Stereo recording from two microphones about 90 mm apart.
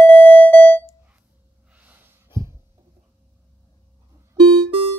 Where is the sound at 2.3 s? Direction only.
55° left (ahead or behind).